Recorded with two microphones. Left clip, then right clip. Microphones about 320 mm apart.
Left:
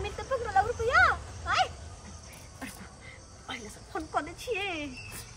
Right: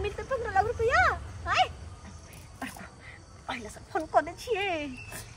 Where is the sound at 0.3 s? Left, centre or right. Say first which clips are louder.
Left 1 dB; centre.